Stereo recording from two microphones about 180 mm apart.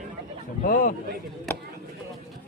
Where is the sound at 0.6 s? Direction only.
50° left (ahead or behind).